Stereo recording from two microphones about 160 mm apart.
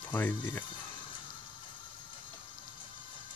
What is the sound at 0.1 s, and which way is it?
Speech, 10° left (ahead or behind).